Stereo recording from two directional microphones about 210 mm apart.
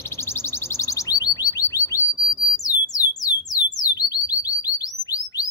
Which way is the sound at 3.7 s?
15° left (ahead or behind).